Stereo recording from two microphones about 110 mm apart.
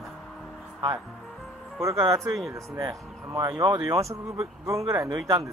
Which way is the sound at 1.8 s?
25° right (ahead or behind).